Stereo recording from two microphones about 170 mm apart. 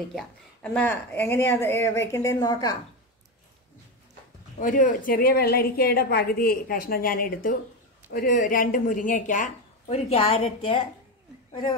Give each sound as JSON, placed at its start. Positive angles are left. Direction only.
{"t": 0.1, "sound": "speech", "side_deg": 5}
{"t": 4.6, "sound": "a woman's voice", "side_deg": 50}